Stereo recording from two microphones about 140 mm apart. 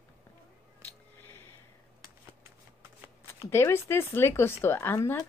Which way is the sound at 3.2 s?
20° left (ahead or behind).